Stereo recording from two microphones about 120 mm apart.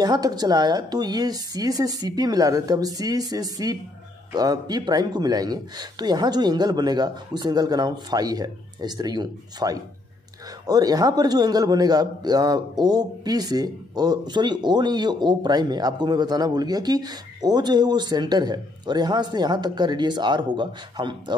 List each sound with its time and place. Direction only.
0.0 s a man's voice: 35° right (ahead or behind)